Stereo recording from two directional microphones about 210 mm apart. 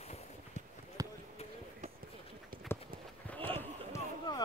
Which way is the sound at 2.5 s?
45° right (ahead or behind).